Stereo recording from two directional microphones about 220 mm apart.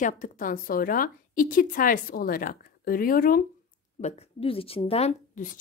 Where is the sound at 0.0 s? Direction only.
35° left (ahead or behind).